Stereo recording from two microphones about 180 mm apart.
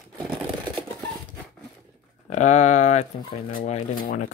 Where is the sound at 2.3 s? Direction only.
40° left (ahead or behind).